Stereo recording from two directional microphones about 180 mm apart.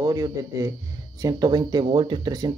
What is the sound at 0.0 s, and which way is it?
Speech, 20° right (ahead or behind).